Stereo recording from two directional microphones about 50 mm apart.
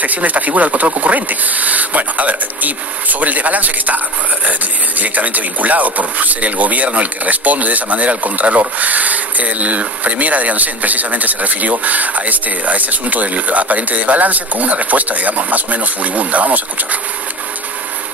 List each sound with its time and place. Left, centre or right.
0.0 s speech: right